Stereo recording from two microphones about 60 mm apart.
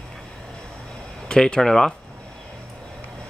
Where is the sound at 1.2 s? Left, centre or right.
Centre.